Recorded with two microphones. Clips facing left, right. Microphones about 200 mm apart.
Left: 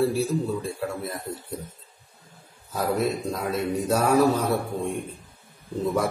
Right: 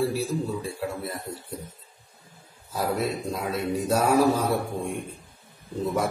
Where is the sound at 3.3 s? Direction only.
5° right (ahead or behind).